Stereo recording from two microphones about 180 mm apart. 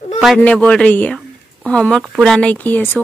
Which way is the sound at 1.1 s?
5° left (ahead or behind).